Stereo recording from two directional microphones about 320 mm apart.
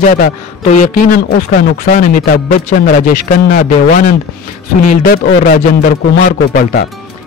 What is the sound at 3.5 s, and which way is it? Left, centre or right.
Speech, left.